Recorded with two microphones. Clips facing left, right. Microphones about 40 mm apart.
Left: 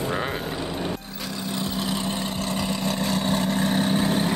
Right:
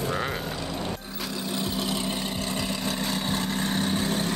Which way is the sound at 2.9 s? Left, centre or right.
Centre.